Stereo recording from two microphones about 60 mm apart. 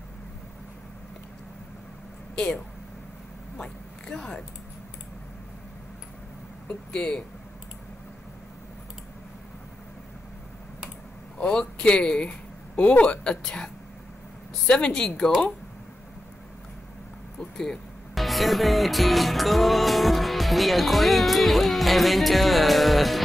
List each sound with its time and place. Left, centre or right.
2.3 s speech: centre
3.5 s cat: centre
6.7 s speech: centre
11.3 s speech: centre
14.7 s speech: centre
17.4 s speech: centre